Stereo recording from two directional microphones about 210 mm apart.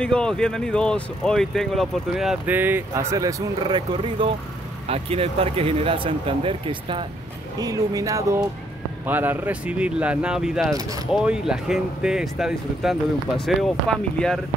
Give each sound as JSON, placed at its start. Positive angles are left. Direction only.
{"t": 0.0, "sound": "speech", "side_deg": 5}
{"t": 10.7, "sound": "speech", "side_deg": -15}
{"t": 11.1, "sound": "speech", "side_deg": -5}